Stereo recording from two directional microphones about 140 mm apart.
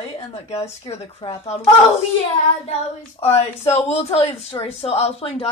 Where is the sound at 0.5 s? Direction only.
50° left (ahead or behind).